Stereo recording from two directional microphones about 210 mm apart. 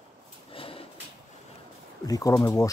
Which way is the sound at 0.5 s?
25° left (ahead or behind).